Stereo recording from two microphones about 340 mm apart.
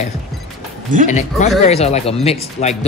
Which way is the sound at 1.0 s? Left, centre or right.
Centre.